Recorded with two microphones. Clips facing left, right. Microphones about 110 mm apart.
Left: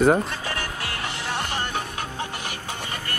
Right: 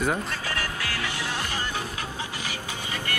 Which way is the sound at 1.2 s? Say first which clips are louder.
Left 3 dB; 60° left (ahead or behind).